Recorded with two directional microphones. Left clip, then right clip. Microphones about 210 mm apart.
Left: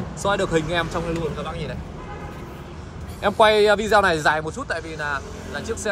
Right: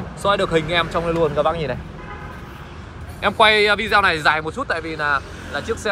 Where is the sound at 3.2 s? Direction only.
15° left (ahead or behind).